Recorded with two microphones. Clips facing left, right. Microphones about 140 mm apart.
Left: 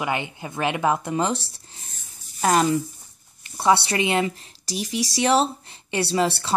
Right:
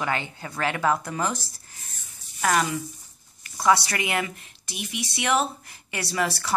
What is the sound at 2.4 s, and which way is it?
A woman's voice, 30° left (ahead or behind).